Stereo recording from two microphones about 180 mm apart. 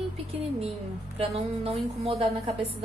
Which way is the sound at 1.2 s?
35° right (ahead or behind).